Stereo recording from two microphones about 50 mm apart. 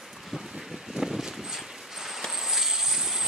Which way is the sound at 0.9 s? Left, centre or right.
Centre.